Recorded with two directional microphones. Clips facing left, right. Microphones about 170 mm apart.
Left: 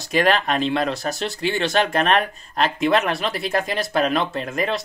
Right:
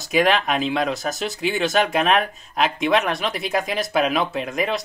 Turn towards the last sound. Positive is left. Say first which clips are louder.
# even
turn(degrees=0)  # may be behind; listen again after turning